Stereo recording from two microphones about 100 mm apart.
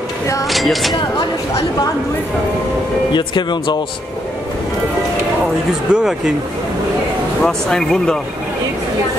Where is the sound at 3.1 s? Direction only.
50° left (ahead or behind).